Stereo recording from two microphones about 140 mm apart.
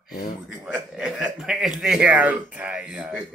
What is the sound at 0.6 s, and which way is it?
A man's voice, 10° right (ahead or behind).